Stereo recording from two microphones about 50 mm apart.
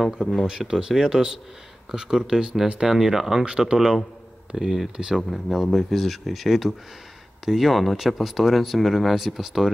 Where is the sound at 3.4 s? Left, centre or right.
Centre.